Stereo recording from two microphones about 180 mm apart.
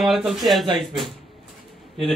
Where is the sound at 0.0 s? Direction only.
Centre (ahead or behind).